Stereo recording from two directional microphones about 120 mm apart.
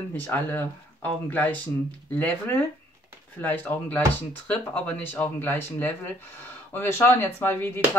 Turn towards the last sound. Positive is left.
turn(degrees=20)  # may be behind; listen again after turning